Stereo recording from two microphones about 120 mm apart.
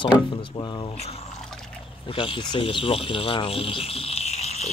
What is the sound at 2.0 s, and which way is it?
Speech, 50° left (ahead or behind).